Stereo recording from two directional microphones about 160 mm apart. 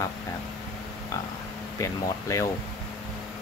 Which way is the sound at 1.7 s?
20° left (ahead or behind).